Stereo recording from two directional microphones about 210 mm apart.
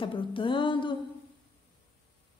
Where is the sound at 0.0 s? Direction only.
25° left (ahead or behind).